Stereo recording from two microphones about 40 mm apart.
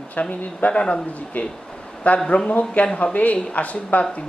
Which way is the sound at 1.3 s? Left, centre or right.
Left.